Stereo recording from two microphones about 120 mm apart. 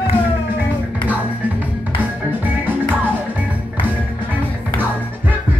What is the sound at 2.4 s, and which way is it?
Music, 15° right (ahead or behind).